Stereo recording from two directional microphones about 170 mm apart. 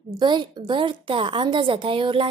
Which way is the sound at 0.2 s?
25° right (ahead or behind).